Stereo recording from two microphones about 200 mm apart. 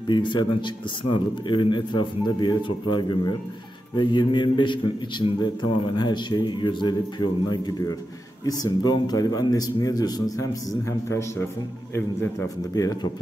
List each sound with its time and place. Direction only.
0.1 s a man's voice: 25° left (ahead or behind)